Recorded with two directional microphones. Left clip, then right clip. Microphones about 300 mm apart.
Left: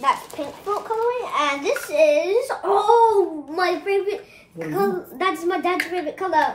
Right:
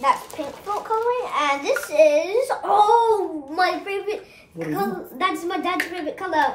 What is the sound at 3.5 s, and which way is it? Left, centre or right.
A woman's voice, centre.